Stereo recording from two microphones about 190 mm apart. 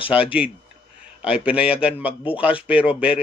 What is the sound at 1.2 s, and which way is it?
Speech, 5° right (ahead or behind).